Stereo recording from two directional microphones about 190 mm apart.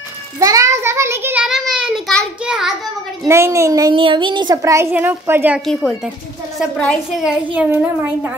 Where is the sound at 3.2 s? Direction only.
15° right (ahead or behind).